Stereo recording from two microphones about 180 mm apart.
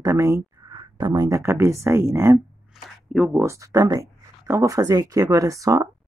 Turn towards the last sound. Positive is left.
turn(degrees=-20)  # may be behind; listen again after turning